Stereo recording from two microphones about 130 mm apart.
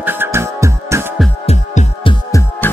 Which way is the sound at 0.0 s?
15° right (ahead or behind).